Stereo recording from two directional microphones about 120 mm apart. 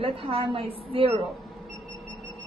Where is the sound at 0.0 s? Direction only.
50° right (ahead or behind).